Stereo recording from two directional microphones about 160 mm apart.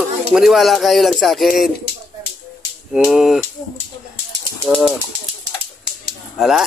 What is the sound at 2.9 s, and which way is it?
Speech, 5° right (ahead or behind).